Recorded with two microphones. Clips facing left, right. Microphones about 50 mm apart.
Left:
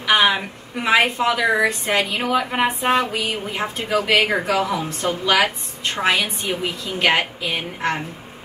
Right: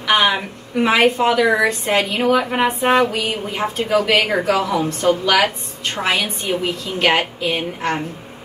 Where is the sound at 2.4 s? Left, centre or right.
Centre.